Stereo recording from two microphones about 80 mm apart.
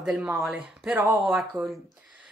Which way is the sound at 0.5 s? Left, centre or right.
Centre.